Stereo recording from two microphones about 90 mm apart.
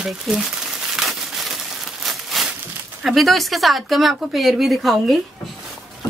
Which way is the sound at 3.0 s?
Centre (ahead or behind).